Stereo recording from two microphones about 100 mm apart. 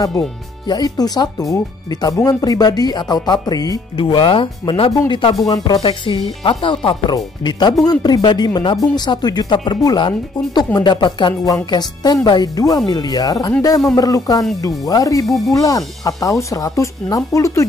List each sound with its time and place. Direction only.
0.7 s speech: 40° left (ahead or behind)
3.9 s speech: 55° left (ahead or behind)
4.9 s speech: 40° left (ahead or behind)
5.8 s speech: 60° left (ahead or behind)
7.4 s speech: 45° left (ahead or behind)
11.4 s speech: 40° left (ahead or behind)
15.2 s speech: centre (ahead or behind)
15.5 s speech: 35° left (ahead or behind)